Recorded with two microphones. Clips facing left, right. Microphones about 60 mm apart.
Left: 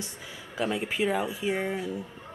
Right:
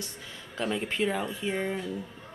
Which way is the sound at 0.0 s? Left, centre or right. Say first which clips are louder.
Left 1 dB; centre.